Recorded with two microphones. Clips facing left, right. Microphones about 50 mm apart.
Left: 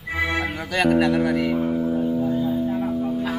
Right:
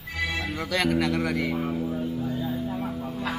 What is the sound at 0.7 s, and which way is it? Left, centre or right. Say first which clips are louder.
Music: left 6 dB; centre.